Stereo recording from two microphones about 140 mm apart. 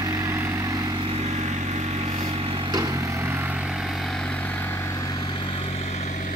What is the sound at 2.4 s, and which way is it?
Vehicle, 30° right (ahead or behind).